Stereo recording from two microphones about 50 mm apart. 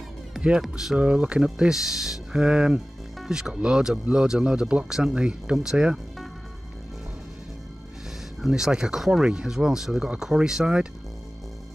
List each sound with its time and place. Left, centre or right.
0.6 s speech: centre
0.9 s speech: right
8.4 s speech: centre